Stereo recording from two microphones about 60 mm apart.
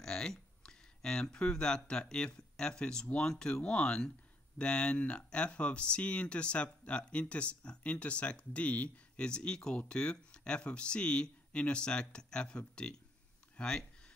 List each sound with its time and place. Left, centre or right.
0.0 s speech: centre